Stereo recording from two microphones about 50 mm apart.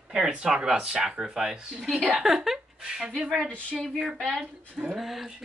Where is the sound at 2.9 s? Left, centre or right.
Centre.